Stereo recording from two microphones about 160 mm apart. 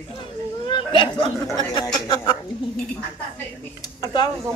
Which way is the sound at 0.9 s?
30° left (ahead or behind).